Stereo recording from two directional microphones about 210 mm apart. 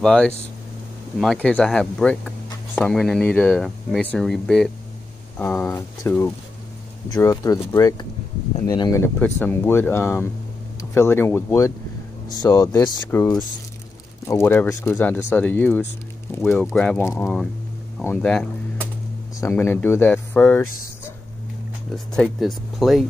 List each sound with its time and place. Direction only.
0.0 s speech: 5° left (ahead or behind)
21.9 s speech: centre (ahead or behind)